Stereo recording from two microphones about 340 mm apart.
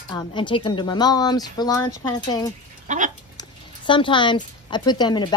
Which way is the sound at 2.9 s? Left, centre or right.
Right.